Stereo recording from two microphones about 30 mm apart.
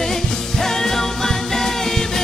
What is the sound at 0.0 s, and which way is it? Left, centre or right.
Music, centre.